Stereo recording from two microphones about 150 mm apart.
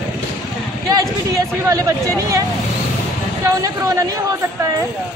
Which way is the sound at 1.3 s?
25° right (ahead or behind).